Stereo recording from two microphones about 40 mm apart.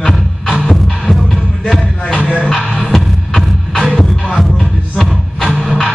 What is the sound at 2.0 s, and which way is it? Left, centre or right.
Music, left.